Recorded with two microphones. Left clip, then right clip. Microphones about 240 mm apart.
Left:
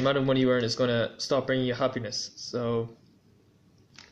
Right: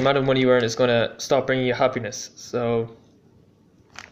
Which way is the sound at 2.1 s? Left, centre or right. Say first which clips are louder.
Left 1 dB; left.